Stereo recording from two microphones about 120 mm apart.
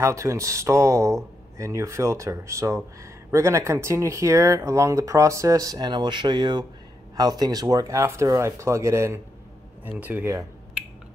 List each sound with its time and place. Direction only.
0.0 s speech: 25° right (ahead or behind)